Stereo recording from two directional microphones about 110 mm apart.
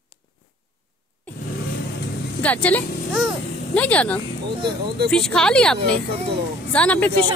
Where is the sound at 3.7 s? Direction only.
10° left (ahead or behind).